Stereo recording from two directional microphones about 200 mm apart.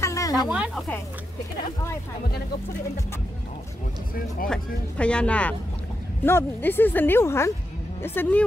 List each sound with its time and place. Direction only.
0.0 s a sound: 15° left (ahead or behind)
0.5 s speech: 5° right (ahead or behind)
4.5 s speech: 5° left (ahead or behind)